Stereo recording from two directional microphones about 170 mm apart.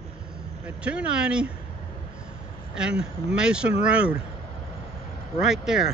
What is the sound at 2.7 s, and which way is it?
Speech, 5° right (ahead or behind).